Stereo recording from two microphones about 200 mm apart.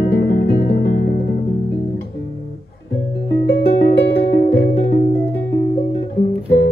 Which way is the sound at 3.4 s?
55° left (ahead or behind).